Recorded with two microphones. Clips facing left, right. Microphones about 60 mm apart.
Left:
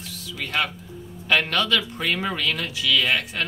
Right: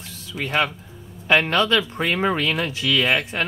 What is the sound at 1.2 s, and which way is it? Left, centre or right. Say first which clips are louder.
Speech: right 4 dB; right.